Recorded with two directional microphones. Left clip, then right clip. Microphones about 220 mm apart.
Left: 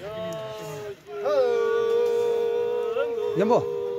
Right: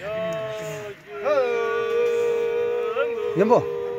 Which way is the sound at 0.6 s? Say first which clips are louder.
Right 3 dB; 45° left (ahead or behind).